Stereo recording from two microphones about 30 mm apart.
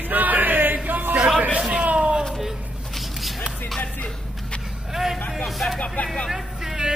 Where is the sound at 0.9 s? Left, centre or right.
Right.